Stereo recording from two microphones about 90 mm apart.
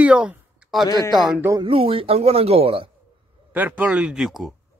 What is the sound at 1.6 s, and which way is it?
Speech, 85° right.